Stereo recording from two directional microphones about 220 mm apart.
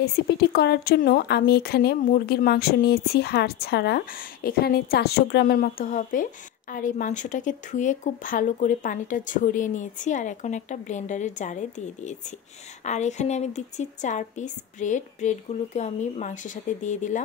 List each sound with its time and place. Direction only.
0.0 s speech: 45° left (ahead or behind)